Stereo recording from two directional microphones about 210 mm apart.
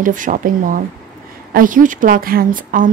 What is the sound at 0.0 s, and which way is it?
A woman's voice, 40° right (ahead or behind).